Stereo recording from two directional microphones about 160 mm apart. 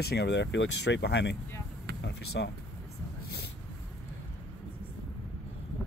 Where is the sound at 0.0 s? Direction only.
85° left.